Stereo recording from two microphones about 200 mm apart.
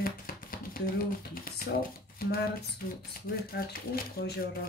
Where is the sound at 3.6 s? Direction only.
55° left (ahead or behind).